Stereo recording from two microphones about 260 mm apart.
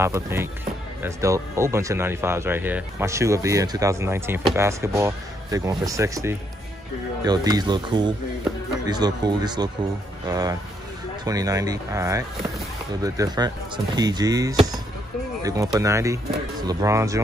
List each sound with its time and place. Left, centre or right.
0.0 s speech: centre